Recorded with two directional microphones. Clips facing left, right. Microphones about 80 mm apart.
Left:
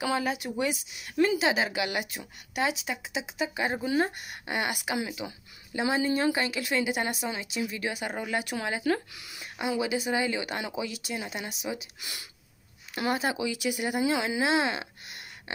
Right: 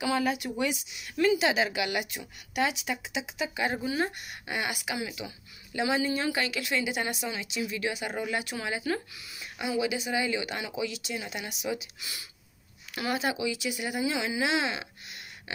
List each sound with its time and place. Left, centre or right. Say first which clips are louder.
0.1 s speech: right 1 dB; left
0.7 s speech: even; left
1.1 s speech: even; left
4.0 s speech: left 2 dB; left
9.4 s speech: even; left
11.8 s speech: even; left
12.9 s speech: left 2 dB; left